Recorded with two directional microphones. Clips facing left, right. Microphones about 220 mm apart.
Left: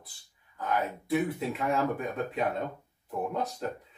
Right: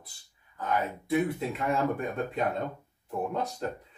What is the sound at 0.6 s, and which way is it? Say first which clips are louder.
Speech: even; centre (ahead or behind).